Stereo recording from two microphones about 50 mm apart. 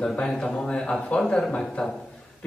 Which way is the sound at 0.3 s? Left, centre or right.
Centre.